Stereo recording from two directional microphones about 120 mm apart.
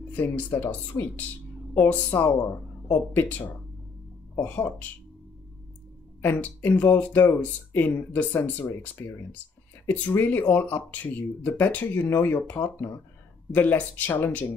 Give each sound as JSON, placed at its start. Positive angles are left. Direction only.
{"t": 0.1, "sound": "speech", "side_deg": 15}
{"t": 6.2, "sound": "speech", "side_deg": 15}